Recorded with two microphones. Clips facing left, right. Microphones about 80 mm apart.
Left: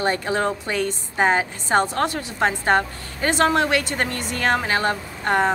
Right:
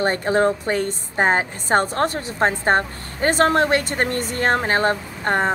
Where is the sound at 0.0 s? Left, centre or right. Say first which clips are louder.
Right 3 dB; right.